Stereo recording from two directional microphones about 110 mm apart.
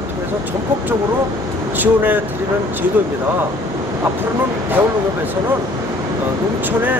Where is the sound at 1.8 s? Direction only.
15° right (ahead or behind).